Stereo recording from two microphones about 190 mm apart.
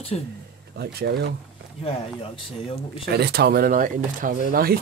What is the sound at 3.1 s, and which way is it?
Speech, 60° right (ahead or behind).